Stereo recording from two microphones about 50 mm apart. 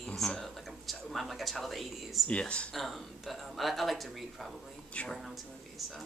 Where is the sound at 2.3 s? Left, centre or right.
Left.